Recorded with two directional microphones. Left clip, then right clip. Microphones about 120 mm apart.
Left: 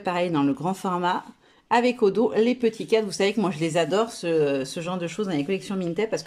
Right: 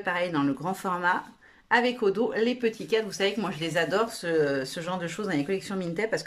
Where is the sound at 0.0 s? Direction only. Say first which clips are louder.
Left 3 dB; 30° left (ahead or behind).